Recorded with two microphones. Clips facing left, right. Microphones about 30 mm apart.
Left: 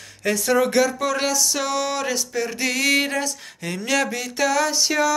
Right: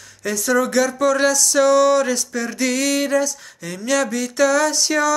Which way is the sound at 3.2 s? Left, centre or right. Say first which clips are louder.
Right 1 dB; left.